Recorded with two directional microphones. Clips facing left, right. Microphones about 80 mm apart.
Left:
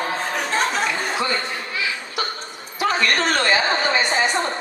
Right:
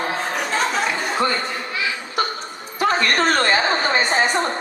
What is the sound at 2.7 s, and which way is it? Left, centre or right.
Speech, right.